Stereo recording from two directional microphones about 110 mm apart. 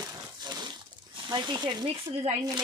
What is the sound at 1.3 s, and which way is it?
Speech, 40° right (ahead or behind).